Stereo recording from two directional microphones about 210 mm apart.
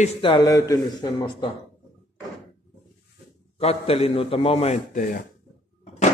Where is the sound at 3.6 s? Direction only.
30° left (ahead or behind).